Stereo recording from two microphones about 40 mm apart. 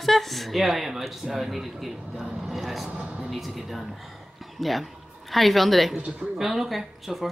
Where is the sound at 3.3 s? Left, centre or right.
Centre.